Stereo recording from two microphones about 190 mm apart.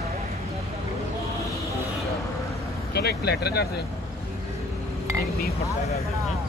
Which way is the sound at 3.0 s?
60° left (ahead or behind).